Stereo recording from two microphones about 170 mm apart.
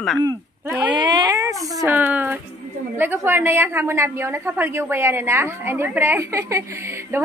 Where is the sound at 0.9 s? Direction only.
25° right (ahead or behind).